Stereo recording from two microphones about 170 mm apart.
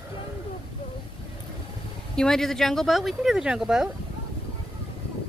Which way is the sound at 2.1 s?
5° left (ahead or behind).